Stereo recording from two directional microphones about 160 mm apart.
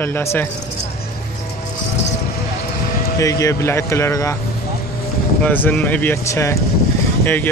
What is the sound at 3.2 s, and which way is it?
Speech, 20° left (ahead or behind).